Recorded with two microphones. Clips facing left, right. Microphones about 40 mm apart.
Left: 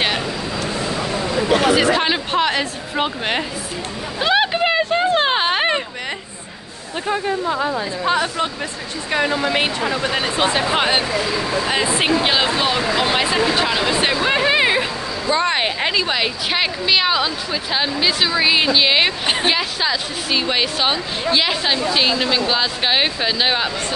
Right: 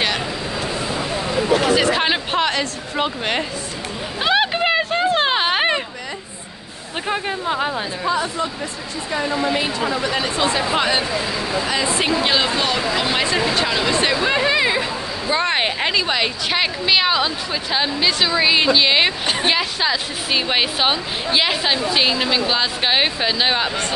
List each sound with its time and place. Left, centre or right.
1.8 s a woman's voice: centre
2.5 s speech: centre
4.2 s a sound: centre
8.1 s speech: left
9.4 s speech: left
9.8 s speech: left
15.2 s a woman's voice: centre